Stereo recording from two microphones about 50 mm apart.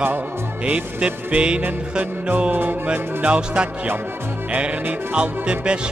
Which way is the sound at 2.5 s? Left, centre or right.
Right.